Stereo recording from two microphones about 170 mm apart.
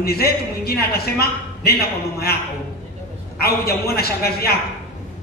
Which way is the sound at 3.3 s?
65° left (ahead or behind).